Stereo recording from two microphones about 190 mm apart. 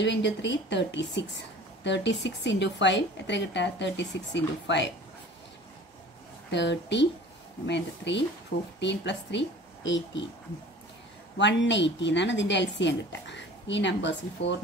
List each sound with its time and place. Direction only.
0.0 s a woman's voice: 65° left (ahead or behind)
6.5 s a woman's voice: 65° left (ahead or behind)
11.3 s a woman's voice: 70° left (ahead or behind)